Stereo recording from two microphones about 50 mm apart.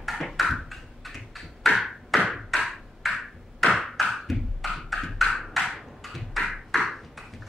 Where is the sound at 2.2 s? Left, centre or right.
Centre.